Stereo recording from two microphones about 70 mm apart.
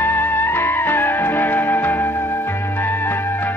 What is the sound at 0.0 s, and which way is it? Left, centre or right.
Music, left.